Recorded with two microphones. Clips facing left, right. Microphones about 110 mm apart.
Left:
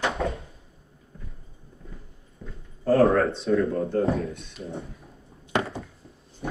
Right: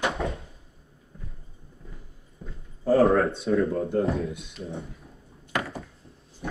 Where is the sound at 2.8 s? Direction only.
Centre (ahead or behind).